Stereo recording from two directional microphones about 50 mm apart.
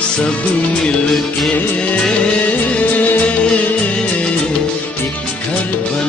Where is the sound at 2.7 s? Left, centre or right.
Left.